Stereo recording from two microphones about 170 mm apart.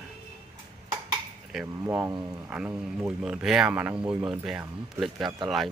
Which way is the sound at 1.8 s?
15° right (ahead or behind).